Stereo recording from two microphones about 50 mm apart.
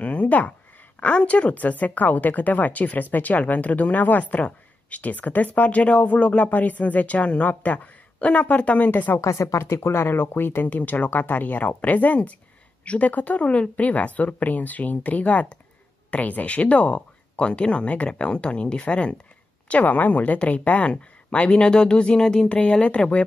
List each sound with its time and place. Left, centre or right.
0.0 s a woman's voice: left
9.2 s a woman's voice: left
19.7 s speech: left; by 22.5 s centre
22.5 s speech: left